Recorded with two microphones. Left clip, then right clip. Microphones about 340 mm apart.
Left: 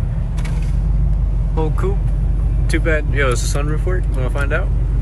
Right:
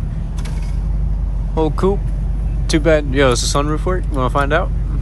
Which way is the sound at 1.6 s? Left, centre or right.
Centre.